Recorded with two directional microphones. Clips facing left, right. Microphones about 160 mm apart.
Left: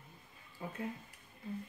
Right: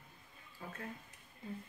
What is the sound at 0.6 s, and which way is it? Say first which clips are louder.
Speech: left 4 dB; 20° left (ahead or behind).